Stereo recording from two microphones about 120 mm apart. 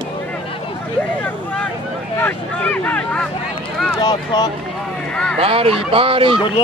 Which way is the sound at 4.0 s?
40° left (ahead or behind).